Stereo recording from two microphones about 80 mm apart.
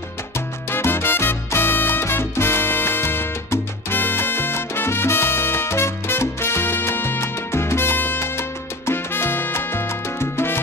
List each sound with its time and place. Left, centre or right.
0.7 s salsa music: left
10.3 s music: left